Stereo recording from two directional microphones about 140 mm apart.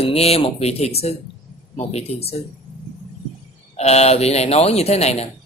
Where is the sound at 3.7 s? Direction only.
50° left (ahead or behind).